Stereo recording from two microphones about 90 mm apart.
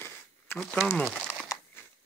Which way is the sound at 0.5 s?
5° left (ahead or behind).